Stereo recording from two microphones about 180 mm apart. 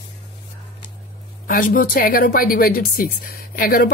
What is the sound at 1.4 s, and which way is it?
Speech, 50° left (ahead or behind).